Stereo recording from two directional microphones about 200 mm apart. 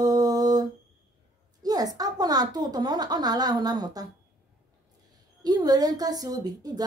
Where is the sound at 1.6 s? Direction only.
20° right (ahead or behind).